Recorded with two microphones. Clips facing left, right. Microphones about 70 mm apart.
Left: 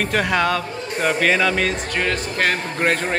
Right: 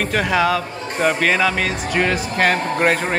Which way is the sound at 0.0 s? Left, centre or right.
Centre.